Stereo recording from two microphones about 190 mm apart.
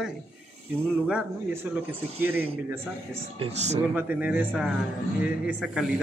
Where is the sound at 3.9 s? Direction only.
10° right (ahead or behind).